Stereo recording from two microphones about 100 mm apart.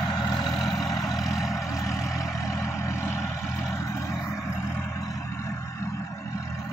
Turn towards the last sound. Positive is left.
turn(degrees=30)  # may be behind; listen again after turning